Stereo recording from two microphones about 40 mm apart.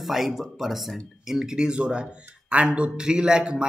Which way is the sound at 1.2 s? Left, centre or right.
Centre.